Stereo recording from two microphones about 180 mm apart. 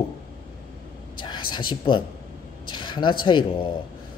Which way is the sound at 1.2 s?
25° left (ahead or behind).